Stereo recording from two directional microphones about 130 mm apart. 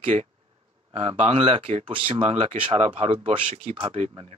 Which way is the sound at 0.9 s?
60° right (ahead or behind).